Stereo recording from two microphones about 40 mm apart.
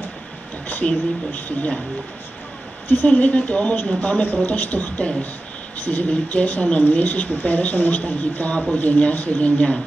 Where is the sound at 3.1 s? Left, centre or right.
Left.